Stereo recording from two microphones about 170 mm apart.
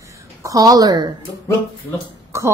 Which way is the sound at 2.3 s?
15° right (ahead or behind).